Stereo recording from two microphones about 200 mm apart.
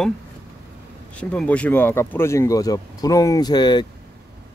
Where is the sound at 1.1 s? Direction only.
5° left (ahead or behind).